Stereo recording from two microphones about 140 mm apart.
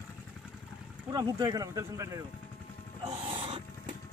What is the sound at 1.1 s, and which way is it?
Speech, 30° right (ahead or behind).